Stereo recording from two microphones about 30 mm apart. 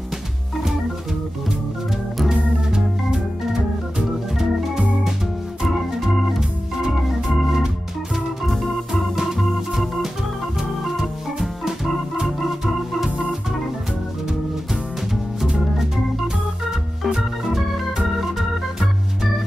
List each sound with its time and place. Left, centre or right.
2.2 s organ: centre
6.8 s organ: centre
9.1 s organ: centre
9.4 s organ: centre
17.1 s organ: centre